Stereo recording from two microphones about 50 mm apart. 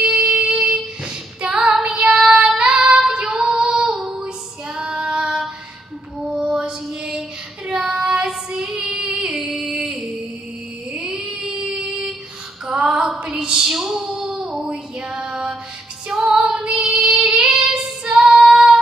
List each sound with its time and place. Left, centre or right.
0.0 s music: right
0.4 s female singing: right
1.9 s child singing: centre
3.3 s female singing: centre
4.7 s child singing: centre
6.1 s a sound: centre
6.5 s child singing: centre
9.4 s a sound: centre
11.0 s child singing: centre
12.6 s female singing: centre
13.3 s a sound: centre
14.7 s music: centre
16.1 s female singing: centre